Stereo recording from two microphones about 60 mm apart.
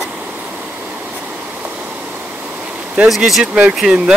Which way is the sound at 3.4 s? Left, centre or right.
Centre.